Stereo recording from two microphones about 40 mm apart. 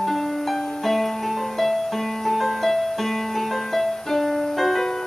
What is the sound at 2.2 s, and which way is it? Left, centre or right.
Music, centre.